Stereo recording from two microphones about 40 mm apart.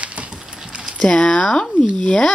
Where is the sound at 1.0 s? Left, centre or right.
Left.